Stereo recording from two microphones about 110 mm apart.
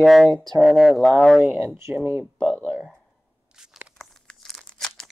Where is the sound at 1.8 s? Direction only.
25° right (ahead or behind).